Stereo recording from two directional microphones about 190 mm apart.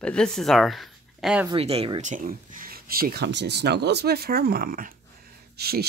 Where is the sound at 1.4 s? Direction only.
30° right (ahead or behind).